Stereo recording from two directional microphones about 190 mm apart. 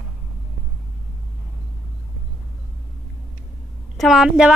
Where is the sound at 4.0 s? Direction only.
Centre (ahead or behind).